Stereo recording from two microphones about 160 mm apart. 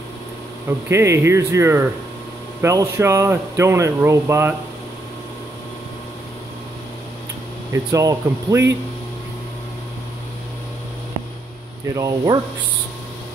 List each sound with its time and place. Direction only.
0.7 s speech: 15° right (ahead or behind)
7.7 s speech: 20° right (ahead or behind)
11.9 s speech: 20° right (ahead or behind)